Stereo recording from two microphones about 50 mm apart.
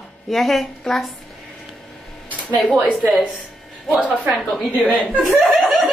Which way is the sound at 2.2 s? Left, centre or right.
Left.